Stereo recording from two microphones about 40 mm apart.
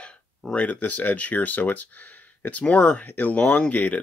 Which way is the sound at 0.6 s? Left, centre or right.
Left.